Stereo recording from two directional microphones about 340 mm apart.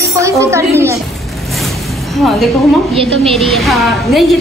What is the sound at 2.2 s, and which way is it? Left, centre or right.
Speech, centre.